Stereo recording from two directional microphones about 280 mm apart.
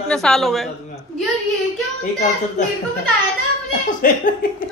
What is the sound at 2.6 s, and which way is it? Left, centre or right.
Speech, left.